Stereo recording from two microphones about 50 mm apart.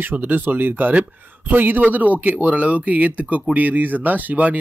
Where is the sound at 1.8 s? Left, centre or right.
Right.